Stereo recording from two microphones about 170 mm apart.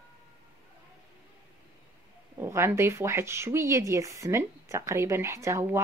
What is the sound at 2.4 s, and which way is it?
Speech, 15° right (ahead or behind).